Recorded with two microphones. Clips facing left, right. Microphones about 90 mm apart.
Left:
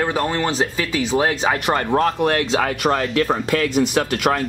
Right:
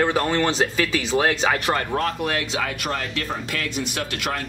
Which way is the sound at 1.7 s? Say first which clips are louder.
Left 5 dB; 30° left (ahead or behind).